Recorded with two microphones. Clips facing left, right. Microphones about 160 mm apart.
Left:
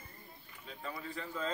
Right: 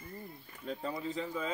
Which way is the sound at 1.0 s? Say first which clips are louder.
Right 1 dB; 15° right (ahead or behind).